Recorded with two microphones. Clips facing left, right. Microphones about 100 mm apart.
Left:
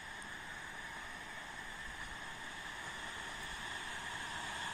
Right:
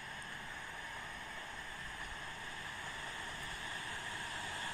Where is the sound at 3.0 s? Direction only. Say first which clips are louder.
Right 1 dB; 20° left (ahead or behind).